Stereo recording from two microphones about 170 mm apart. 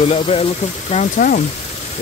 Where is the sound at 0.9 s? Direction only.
50° left (ahead or behind).